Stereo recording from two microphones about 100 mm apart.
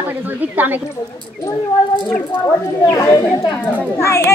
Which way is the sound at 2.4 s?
25° left (ahead or behind).